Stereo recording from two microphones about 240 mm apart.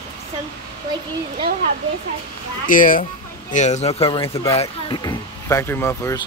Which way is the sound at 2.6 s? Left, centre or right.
Left.